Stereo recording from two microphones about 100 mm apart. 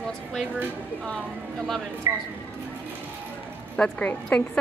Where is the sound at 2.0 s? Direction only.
30° right (ahead or behind).